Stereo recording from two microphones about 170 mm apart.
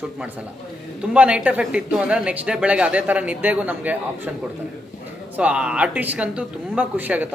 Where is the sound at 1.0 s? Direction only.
5° right (ahead or behind).